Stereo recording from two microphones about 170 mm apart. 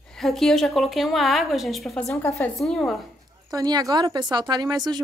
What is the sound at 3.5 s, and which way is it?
Speech, 20° right (ahead or behind).